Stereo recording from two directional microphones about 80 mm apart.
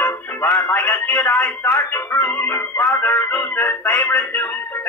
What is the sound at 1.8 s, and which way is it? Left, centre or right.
Music, left.